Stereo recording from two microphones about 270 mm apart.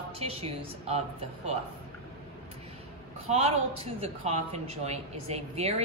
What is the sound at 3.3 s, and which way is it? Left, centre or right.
A woman's voice, right.